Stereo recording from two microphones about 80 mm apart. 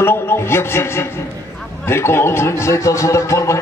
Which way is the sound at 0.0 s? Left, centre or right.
Left.